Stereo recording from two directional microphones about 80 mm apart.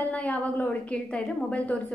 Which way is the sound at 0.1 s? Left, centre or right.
Centre.